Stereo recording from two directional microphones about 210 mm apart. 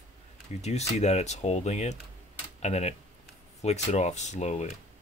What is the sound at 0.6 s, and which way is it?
Speech, 30° left (ahead or behind).